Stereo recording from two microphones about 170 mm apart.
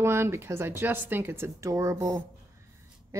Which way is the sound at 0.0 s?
15° right (ahead or behind).